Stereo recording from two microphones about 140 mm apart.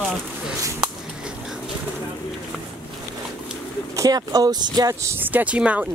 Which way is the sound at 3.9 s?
25° right (ahead or behind).